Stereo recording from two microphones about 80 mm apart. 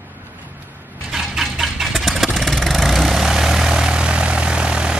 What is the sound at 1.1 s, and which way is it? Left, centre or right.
Vehicle, centre.